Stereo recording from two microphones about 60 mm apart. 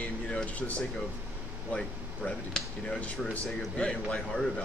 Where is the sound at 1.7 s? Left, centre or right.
Centre.